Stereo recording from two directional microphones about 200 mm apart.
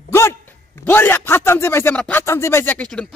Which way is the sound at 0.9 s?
10° left (ahead or behind).